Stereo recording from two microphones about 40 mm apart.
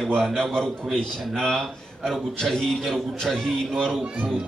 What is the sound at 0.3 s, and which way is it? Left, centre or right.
A man's voice, centre.